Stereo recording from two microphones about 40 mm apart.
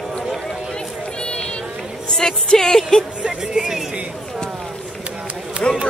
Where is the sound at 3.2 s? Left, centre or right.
Right.